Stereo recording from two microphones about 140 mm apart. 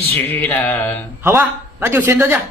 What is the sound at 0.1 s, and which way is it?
Speech, 15° left (ahead or behind).